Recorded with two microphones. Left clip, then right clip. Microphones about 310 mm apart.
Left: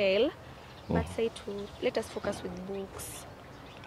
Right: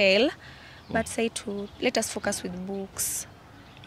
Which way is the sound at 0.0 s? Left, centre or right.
Right.